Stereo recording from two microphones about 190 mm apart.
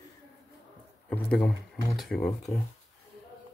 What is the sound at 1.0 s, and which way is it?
Speech, 10° left (ahead or behind).